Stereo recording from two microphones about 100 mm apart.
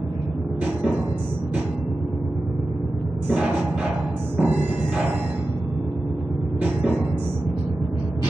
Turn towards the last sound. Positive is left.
turn(degrees=-15)  # may be behind; listen again after turning